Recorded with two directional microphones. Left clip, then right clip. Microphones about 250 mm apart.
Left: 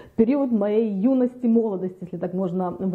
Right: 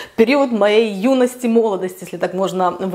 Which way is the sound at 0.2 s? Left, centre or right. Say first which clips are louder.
Right 8 dB; centre.